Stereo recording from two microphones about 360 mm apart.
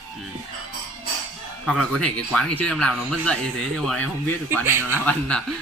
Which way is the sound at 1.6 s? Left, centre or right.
Centre.